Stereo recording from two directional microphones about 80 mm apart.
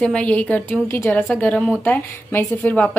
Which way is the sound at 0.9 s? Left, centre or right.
Left.